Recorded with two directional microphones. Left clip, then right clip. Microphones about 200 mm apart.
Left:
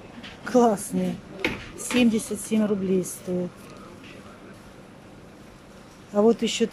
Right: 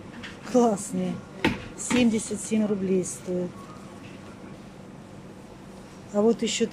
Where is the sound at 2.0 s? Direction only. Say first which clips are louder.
Left 2 dB; centre (ahead or behind).